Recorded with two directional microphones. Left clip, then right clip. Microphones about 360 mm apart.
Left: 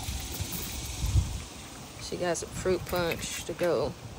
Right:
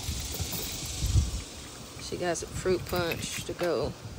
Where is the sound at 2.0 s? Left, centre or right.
Centre.